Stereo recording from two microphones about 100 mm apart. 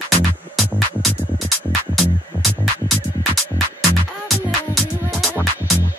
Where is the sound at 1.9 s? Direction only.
Centre (ahead or behind).